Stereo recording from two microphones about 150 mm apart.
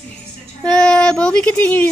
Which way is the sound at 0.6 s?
5° left (ahead or behind).